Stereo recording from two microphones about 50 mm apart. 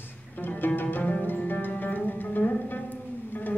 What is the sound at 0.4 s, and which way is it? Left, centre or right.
Music, left.